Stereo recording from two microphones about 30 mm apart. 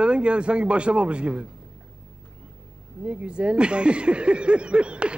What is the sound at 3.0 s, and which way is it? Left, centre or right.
Speech, right.